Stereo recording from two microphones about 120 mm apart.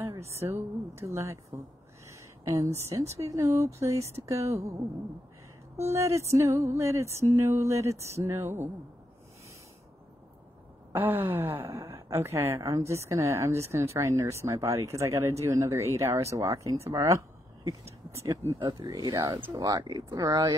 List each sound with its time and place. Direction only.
0.2 s a woman's voice: 20° right (ahead or behind)
2.0 s a sound: 30° right (ahead or behind)
2.9 s a woman's voice: 25° right (ahead or behind)
5.9 s a woman's voice: 25° right (ahead or behind)
10.9 s a woman's voice: 20° right (ahead or behind)
18.6 s speech: 40° right (ahead or behind)